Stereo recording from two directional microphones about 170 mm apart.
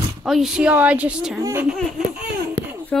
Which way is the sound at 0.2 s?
Centre (ahead or behind).